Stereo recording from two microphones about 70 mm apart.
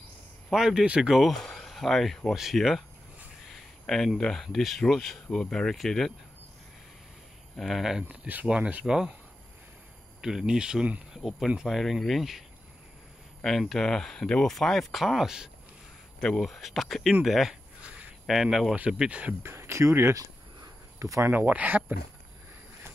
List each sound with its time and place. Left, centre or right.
0.5 s speech: centre
3.5 s a sound: centre
4.2 s speech: centre
7.5 s speech: centre
8.1 s speech: right
8.8 s speech: centre
10.2 s speech: centre
17.8 s a sound: centre
18.2 s speech: centre
19.4 s speech: right
21.0 s speech: right
21.3 s speech: right